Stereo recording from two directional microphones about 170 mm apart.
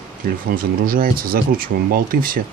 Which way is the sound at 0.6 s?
60° right (ahead or behind).